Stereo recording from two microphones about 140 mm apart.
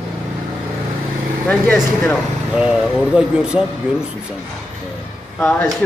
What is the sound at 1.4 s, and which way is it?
Speech, 15° left (ahead or behind).